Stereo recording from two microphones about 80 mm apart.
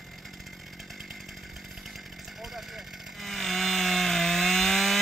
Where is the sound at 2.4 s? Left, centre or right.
Centre.